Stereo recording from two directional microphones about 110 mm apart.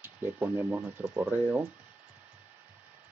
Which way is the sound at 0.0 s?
20° right (ahead or behind).